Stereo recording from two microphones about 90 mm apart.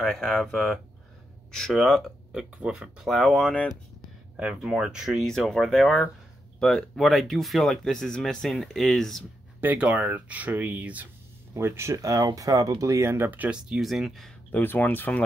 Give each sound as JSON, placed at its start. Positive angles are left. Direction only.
{"t": 0.0, "sound": "speech", "side_deg": 0}
{"t": 9.6, "sound": "speech", "side_deg": -15}
{"t": 11.5, "sound": "speech", "side_deg": -30}
{"t": 13.6, "sound": "speech", "side_deg": -5}
{"t": 14.5, "sound": "speech", "side_deg": 20}